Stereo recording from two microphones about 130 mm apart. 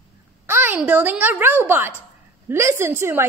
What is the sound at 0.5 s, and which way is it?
Speech, 15° right (ahead or behind).